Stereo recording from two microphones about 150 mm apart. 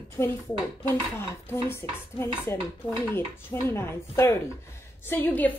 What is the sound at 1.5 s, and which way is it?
A woman's voice, 15° left (ahead or behind).